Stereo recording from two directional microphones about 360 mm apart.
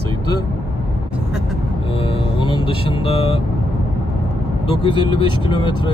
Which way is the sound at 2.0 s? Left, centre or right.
Centre.